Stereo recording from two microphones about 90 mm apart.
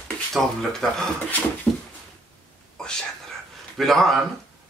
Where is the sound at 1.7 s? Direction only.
15° left (ahead or behind).